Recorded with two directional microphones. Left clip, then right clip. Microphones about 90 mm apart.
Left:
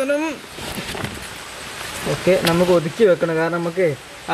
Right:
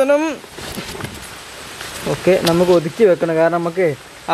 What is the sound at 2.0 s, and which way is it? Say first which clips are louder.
Speech: right 2 dB; 20° right (ahead or behind).